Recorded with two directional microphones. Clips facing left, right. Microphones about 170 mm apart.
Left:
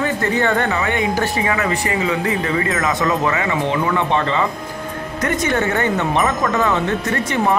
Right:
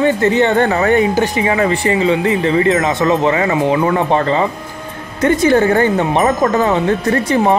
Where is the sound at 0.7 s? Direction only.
35° right (ahead or behind).